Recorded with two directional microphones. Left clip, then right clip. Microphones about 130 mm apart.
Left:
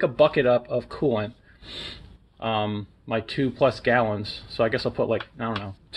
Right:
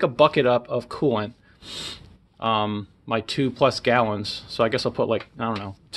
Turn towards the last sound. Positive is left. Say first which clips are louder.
# right 2 dB
turn(degrees=-25)  # may be behind; listen again after turning